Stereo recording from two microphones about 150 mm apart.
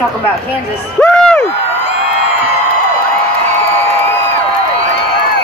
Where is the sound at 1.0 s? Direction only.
5° left (ahead or behind).